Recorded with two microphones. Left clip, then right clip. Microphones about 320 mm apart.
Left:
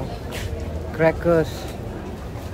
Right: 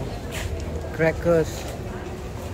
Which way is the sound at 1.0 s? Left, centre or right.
Centre.